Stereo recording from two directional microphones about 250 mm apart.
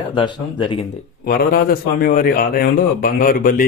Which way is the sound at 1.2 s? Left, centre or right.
Left.